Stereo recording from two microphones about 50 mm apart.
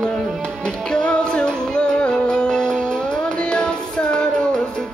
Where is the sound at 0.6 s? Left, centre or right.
Centre.